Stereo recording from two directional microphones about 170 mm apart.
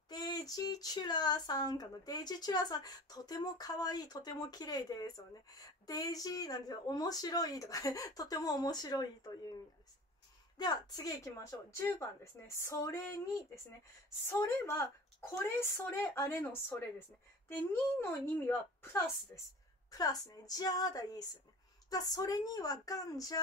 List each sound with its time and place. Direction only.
0.1 s speech: 25° left (ahead or behind)
10.6 s a woman's voice: 25° left (ahead or behind)